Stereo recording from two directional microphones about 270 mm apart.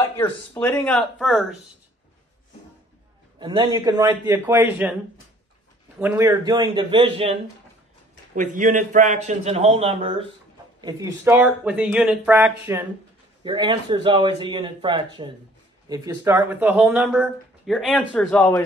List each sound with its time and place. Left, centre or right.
0.0 s speech: centre
3.3 s speech: centre
5.9 s speech: centre
8.4 s a man's voice: right; by 12.8 s centre
13.4 s speech: centre
15.9 s speech: centre